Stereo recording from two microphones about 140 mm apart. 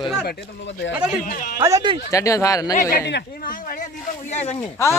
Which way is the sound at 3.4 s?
75° left (ahead or behind).